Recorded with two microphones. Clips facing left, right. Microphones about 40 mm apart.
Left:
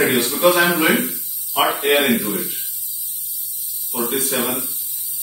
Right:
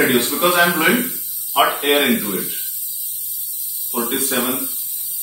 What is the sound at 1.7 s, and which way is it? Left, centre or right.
Speech, right.